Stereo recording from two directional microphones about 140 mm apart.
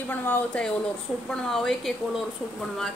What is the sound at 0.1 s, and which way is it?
Speech, 15° left (ahead or behind).